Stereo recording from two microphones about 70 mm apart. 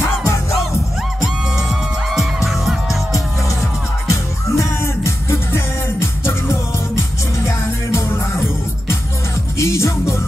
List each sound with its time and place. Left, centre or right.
1.2 s music: centre
4.1 s music: left
8.1 s music: left
9.6 s music: left